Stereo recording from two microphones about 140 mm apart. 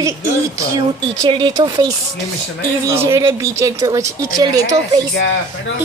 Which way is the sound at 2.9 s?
20° right (ahead or behind).